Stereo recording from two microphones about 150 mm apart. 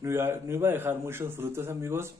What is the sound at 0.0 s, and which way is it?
Speech, 15° right (ahead or behind).